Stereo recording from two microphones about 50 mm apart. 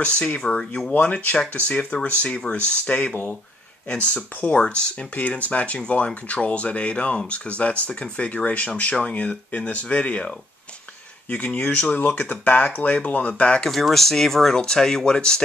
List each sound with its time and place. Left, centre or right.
0.0 s speech: left
1.0 s speech: left
2.5 s speech: left
4.6 s speech: centre
13.7 s speech: centre